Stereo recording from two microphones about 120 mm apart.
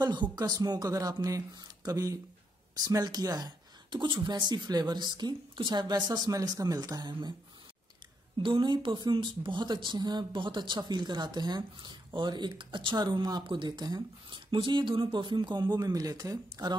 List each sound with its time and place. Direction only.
0.0 s speech: 35° right (ahead or behind)
8.4 s speech: 40° right (ahead or behind)